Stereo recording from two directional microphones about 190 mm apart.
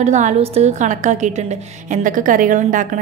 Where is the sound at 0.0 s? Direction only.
40° right (ahead or behind).